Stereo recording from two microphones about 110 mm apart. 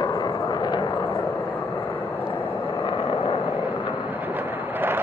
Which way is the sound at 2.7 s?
40° left (ahead or behind).